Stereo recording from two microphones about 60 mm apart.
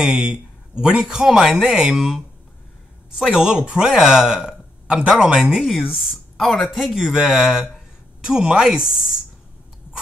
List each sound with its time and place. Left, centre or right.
0.0 s speech: centre
6.3 s speech: centre
6.7 s speech: centre